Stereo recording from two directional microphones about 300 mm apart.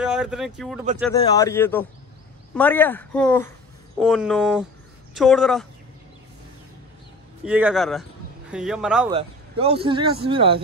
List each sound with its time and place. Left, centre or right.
0.0 s speech: centre
1.1 s speech: centre
7.4 s speech: centre
9.1 s a man's voice: centre